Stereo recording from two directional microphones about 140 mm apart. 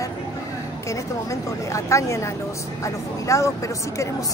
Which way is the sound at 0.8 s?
20° left (ahead or behind).